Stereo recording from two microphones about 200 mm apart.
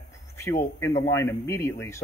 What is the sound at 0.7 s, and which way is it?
Speech, 15° left (ahead or behind).